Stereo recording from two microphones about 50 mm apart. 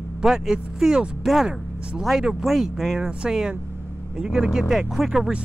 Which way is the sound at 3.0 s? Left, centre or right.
Centre.